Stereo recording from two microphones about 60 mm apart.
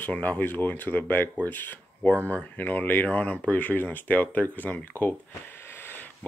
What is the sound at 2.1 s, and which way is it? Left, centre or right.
Speech, right.